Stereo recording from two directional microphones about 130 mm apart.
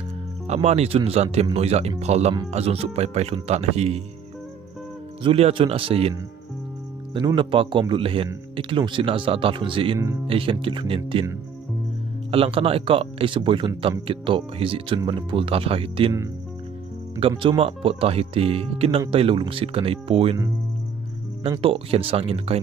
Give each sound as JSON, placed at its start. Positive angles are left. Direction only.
{"t": 0.5, "sound": "speech", "side_deg": -55}
{"t": 5.2, "sound": "speech", "side_deg": -45}
{"t": 7.3, "sound": "speech", "side_deg": -40}
{"t": 12.3, "sound": "speech", "side_deg": -45}
{"t": 17.4, "sound": "speech", "side_deg": -45}
{"t": 21.4, "sound": "speech", "side_deg": -45}